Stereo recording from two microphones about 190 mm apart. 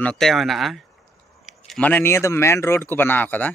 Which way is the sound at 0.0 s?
5° left (ahead or behind).